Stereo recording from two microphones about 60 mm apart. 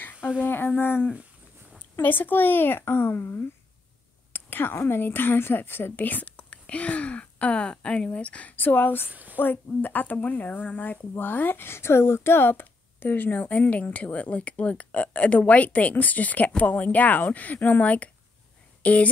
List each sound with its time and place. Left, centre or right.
0.5 s a woman's voice: left
9.1 s a woman's voice: right
9.4 s speech: left